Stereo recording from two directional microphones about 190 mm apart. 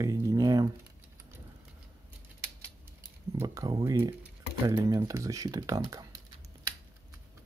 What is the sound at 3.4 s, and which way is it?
Speech, 15° right (ahead or behind).